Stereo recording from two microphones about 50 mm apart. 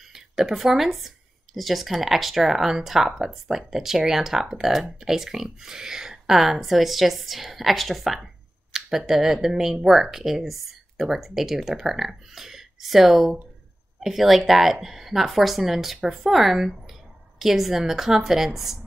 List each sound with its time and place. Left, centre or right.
0.1 s speech: centre